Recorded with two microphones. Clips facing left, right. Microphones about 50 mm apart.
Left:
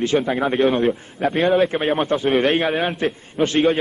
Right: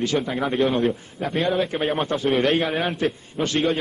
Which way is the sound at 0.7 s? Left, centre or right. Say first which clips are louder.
Left 3 dB; left.